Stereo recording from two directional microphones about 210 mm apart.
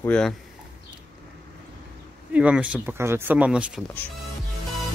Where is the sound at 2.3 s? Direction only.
5° right (ahead or behind).